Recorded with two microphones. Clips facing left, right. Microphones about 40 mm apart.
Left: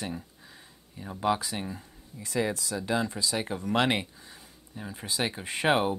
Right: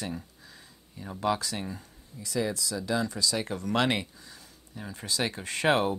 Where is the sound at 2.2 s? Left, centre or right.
Left.